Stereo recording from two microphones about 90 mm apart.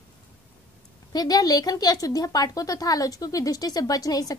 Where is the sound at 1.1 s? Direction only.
45° left (ahead or behind).